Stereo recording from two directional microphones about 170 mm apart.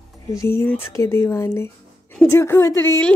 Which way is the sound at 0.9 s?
15° left (ahead or behind).